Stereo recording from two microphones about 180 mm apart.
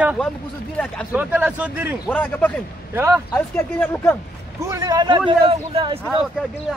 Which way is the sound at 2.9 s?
15° right (ahead or behind).